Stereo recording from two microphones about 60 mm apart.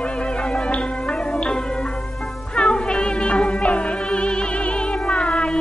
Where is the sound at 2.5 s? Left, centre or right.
Centre.